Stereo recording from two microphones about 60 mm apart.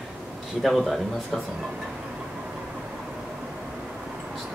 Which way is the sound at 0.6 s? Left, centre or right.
Centre.